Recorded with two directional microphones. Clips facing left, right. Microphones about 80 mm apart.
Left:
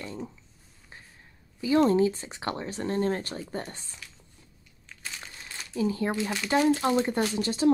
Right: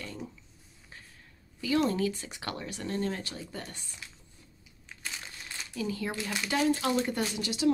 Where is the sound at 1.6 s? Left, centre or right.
Left.